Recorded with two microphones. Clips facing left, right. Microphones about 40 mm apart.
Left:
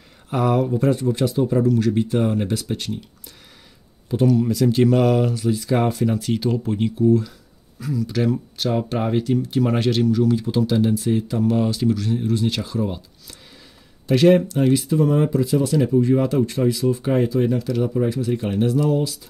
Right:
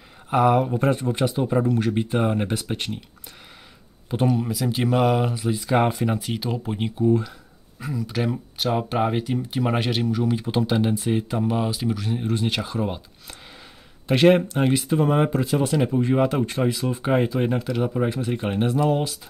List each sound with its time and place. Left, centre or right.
0.3 s speech: right
4.1 s speech: right
4.4 s speech: centre
11.6 s speech: centre; by 18.9 s right